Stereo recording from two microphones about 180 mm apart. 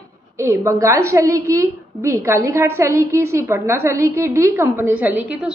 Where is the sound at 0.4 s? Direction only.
15° right (ahead or behind).